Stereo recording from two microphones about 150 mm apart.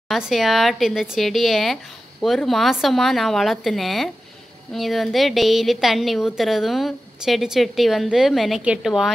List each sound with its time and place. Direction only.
0.1 s a woman's voice: centre (ahead or behind)